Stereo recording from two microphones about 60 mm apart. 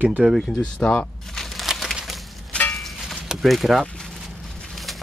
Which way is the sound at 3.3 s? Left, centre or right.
Centre.